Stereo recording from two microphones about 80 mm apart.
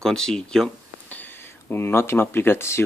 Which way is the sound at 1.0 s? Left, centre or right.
Left.